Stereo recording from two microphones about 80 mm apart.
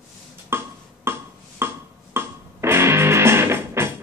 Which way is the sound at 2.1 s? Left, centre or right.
Right.